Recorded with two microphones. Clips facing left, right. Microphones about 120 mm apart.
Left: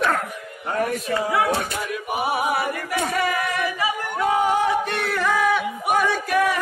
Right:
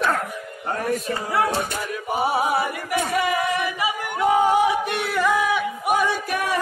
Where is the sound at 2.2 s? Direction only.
25° right (ahead or behind); by 6.0 s 5° right (ahead or behind).